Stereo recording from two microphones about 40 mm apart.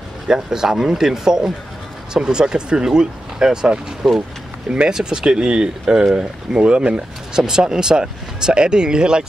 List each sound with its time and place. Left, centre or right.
0.3 s speech: centre